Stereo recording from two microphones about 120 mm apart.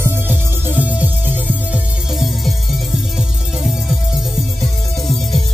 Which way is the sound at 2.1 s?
Centre (ahead or behind).